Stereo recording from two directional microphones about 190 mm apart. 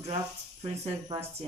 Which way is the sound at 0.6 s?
30° right (ahead or behind).